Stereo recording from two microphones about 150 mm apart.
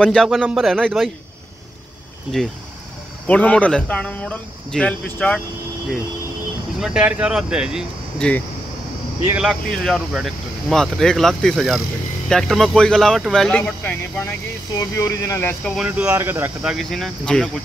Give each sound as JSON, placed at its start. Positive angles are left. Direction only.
{"t": 0.0, "sound": "speech", "side_deg": 0}
{"t": 2.3, "sound": "speech", "side_deg": 5}
{"t": 6.8, "sound": "speech", "side_deg": -5}
{"t": 8.2, "sound": "speech", "side_deg": 10}
{"t": 9.3, "sound": "speech", "side_deg": -5}
{"t": 15.6, "sound": "speech", "side_deg": 0}
{"t": 16.1, "sound": "speech", "side_deg": -15}
{"t": 16.7, "sound": "speech", "side_deg": 0}